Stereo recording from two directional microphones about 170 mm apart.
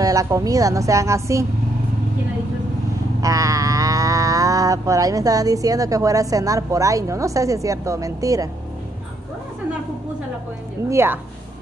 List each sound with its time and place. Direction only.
0.0 s a woman's voice: 20° right (ahead or behind)
3.2 s a sound: 20° right (ahead or behind)
10.9 s speech: 15° right (ahead or behind)